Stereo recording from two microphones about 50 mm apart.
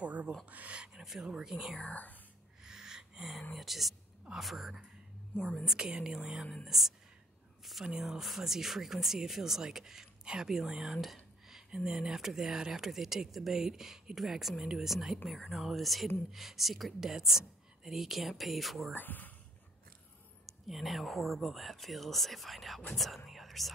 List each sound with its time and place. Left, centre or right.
0.0 s a sound: right
0.5 s speech: right
0.9 s a sound: centre
1.2 s speech: centre
1.8 s speech: left
2.6 s gasp: centre
3.5 s speech: centre
18.9 s speech: left
20.4 s speech: centre